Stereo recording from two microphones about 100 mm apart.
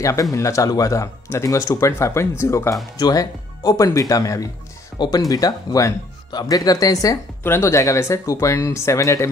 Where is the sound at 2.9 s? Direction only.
35° left (ahead or behind).